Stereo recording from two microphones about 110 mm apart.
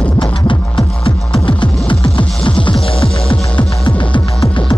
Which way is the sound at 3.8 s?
45° left (ahead or behind).